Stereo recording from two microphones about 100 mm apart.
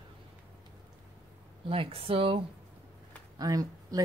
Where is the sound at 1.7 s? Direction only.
70° right (ahead or behind).